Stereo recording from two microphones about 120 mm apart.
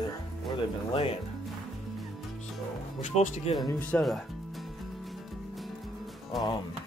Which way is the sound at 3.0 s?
80° left.